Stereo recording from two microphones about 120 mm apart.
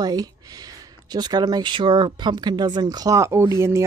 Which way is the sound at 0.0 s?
30° right (ahead or behind).